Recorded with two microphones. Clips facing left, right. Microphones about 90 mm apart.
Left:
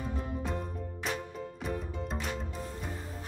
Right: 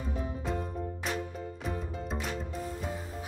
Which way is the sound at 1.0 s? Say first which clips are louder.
Left 2 dB; centre (ahead or behind).